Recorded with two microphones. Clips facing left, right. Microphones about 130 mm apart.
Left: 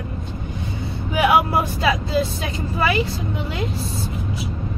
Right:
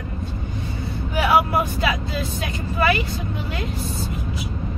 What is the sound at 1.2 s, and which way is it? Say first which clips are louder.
Speech: left 1 dB; 30° left (ahead or behind).